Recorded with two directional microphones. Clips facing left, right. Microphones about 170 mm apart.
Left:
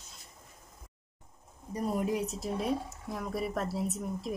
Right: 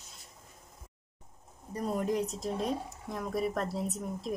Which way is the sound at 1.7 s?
10° left (ahead or behind).